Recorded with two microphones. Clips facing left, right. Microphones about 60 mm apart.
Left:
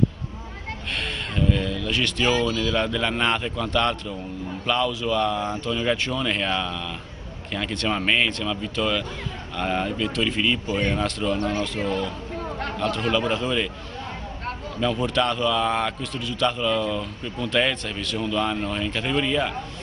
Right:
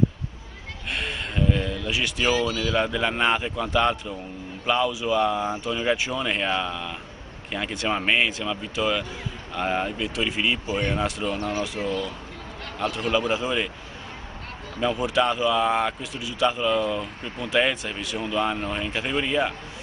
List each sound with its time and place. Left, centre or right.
0.9 s speech: centre
2.2 s speech: right
2.7 s a man's voice: centre
11.2 s speech: centre
11.8 s speech: left
12.7 s a man's voice: centre
14.8 s a man's voice: centre